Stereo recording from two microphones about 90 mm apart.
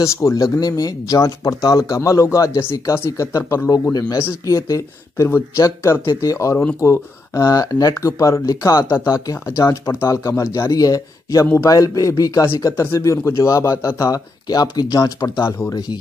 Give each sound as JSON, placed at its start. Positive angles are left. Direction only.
{"t": 0.0, "sound": "speech", "side_deg": 35}